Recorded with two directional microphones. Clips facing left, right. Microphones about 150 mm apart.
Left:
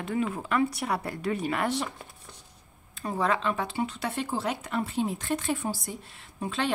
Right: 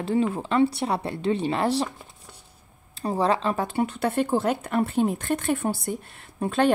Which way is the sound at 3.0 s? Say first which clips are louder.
Right 4 dB; 35° right (ahead or behind).